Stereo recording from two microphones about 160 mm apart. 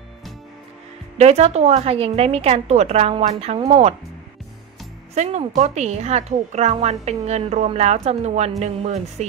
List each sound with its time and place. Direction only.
1.1 s a woman's voice: 40° right (ahead or behind)
5.1 s speech: 45° right (ahead or behind)